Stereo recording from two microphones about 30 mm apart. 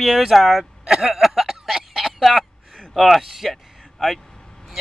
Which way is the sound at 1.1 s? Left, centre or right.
Centre.